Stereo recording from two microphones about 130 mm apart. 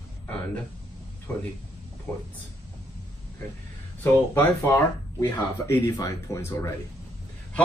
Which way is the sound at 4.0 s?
20° left (ahead or behind).